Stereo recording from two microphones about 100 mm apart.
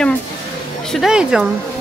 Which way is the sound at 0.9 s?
5° right (ahead or behind).